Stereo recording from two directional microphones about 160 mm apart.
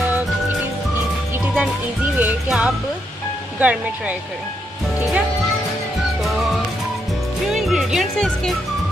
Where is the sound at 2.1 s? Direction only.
10° right (ahead or behind).